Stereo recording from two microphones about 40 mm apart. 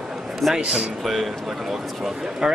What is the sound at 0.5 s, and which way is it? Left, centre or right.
Speech, centre.